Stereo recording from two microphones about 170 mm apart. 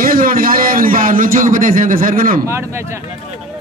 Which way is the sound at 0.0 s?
55° right (ahead or behind).